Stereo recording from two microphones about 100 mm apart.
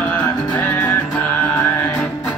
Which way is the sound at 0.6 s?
15° left (ahead or behind).